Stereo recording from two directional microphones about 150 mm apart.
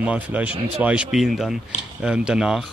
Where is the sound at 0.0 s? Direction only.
10° right (ahead or behind).